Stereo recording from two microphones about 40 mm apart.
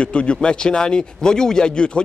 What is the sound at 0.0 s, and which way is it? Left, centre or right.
Speech, left.